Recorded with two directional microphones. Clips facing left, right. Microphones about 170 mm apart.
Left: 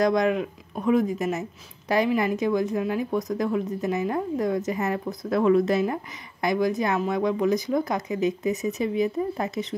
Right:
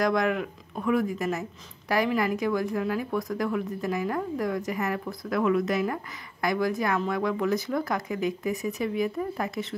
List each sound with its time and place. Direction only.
0.0 s speech: 20° left (ahead or behind)